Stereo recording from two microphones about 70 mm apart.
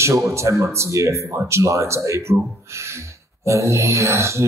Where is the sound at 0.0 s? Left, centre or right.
Right.